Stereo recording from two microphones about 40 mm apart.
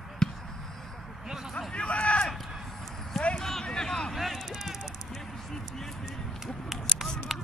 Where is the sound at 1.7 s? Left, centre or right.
Left.